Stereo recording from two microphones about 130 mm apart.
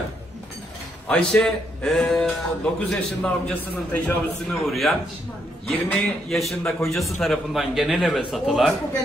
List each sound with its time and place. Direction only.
1.0 s a man's voice: 5° left (ahead or behind)
5.7 s a man's voice: 10° left (ahead or behind)
6.2 s a man's voice: centre (ahead or behind)